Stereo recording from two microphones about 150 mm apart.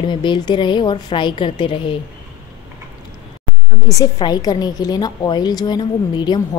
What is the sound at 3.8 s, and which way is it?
A woman's voice, 25° left (ahead or behind).